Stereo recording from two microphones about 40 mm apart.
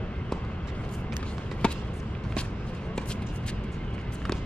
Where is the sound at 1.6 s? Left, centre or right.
Left.